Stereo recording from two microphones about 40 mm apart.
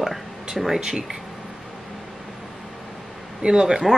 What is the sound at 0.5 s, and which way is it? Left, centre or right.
Speech, centre.